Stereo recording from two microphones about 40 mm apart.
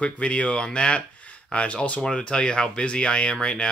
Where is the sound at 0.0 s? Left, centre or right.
Left.